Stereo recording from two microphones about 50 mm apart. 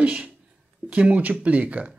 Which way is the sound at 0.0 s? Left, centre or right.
Right.